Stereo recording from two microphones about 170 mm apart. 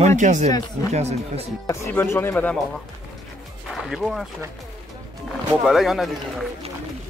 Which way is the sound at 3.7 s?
Centre (ahead or behind).